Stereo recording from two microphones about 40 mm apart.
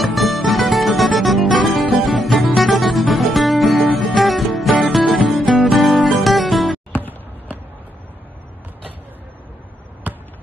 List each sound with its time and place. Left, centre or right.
0.0 s music: centre
7.0 s basketball bounce: right
10.1 s basketball bounce: right